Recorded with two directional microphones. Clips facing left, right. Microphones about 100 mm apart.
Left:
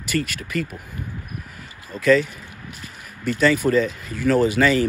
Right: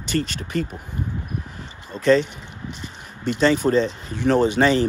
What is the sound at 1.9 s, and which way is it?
Speech, 30° right (ahead or behind).